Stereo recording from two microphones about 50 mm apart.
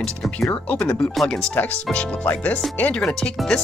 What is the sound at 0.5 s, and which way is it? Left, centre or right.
Speech, left.